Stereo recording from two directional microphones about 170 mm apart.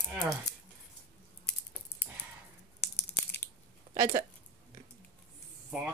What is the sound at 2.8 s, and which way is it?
Crushing, 15° left (ahead or behind).